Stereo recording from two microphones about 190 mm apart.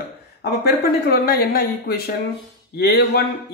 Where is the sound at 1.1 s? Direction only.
55° left (ahead or behind).